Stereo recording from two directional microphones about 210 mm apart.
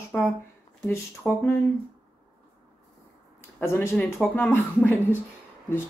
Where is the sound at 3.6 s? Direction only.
10° left (ahead or behind).